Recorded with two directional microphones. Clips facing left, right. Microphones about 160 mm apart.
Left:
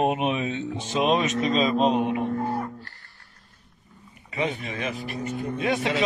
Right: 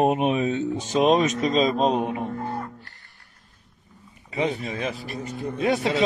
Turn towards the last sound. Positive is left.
turn(degrees=-35)  # may be behind; listen again after turning